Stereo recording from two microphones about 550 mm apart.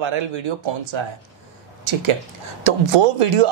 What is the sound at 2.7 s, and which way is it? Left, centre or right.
Speech, right.